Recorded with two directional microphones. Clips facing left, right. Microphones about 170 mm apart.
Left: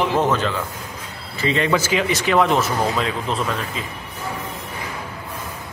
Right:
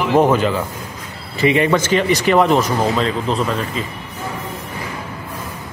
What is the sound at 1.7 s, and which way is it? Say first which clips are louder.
Speech: right 4 dB; 5° left (ahead or behind).